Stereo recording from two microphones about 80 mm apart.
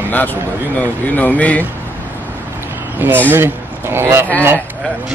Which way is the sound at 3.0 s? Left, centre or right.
Right.